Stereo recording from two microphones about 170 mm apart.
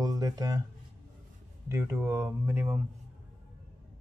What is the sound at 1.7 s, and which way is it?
Speech, 15° right (ahead or behind).